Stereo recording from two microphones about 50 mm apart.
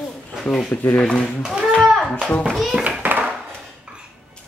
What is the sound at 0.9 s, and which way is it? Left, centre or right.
Speech, centre.